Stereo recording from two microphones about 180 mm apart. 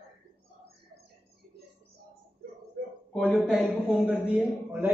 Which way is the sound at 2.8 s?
50° right (ahead or behind).